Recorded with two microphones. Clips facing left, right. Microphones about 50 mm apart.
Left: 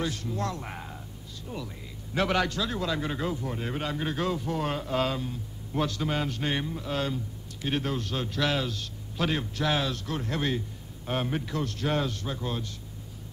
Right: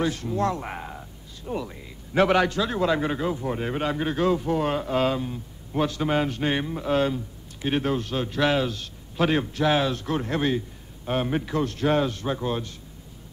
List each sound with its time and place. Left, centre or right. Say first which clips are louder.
0.0 s speech: right 6 dB; right